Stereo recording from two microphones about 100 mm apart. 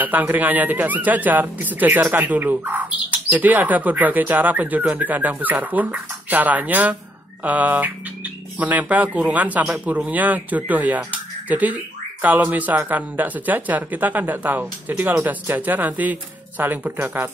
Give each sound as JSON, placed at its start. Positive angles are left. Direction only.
{"t": 0.0, "sound": "speech", "side_deg": -20}